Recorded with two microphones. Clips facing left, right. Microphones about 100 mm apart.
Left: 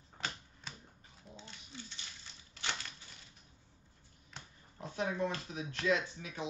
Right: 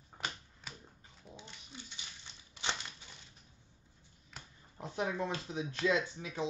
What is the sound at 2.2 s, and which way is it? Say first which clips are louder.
Crushing: right 2 dB; 20° right (ahead or behind).